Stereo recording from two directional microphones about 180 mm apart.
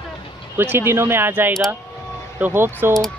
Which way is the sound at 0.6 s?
10° right (ahead or behind).